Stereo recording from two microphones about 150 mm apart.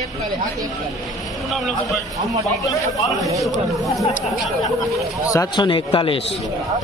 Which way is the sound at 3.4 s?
Centre (ahead or behind).